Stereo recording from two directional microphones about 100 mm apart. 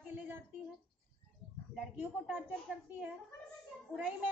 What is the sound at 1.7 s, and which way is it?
Speech, 5° right (ahead or behind).